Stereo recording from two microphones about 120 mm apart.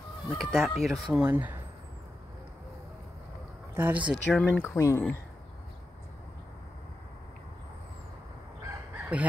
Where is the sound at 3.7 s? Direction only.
15° right (ahead or behind).